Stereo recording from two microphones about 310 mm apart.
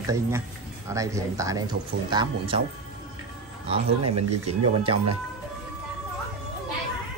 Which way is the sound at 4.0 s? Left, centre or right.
Right.